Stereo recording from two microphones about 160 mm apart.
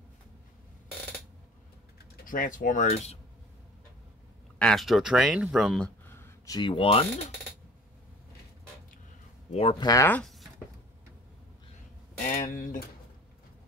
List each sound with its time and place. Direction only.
2.2 s speech: 55° left (ahead or behind)
4.6 s speech: centre (ahead or behind)
6.0 s a sound: 15° left (ahead or behind); by 7.1 s 35° left (ahead or behind)
9.5 s speech: 35° left (ahead or behind)
9.8 s speech: 15° left (ahead or behind)
12.3 s speech: 55° left (ahead or behind)